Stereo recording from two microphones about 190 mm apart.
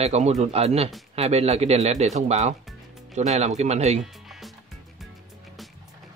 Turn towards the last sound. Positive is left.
turn(degrees=0)  # may be behind; listen again after turning